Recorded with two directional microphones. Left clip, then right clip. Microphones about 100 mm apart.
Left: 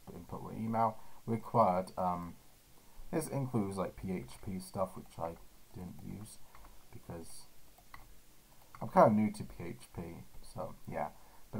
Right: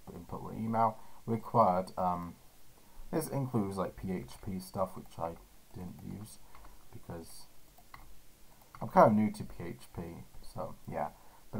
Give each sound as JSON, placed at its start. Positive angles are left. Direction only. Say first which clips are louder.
{"t": 0.0, "sound": "speech", "louder": "right 2 dB", "side_deg": 0}
{"t": 6.6, "sound": "a sound", "louder": "right 2 dB", "side_deg": 0}
{"t": 8.7, "sound": "speech", "louder": "right 2 dB", "side_deg": 0}